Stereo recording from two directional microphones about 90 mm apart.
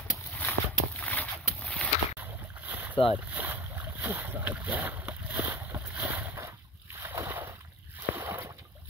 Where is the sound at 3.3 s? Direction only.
20° right (ahead or behind).